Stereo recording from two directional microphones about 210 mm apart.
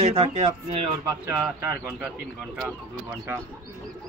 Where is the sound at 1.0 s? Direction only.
10° right (ahead or behind).